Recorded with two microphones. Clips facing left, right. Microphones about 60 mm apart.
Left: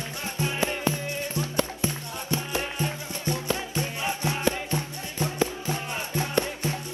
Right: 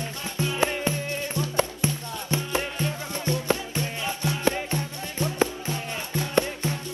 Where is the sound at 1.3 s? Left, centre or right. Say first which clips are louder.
Right 2 dB; right.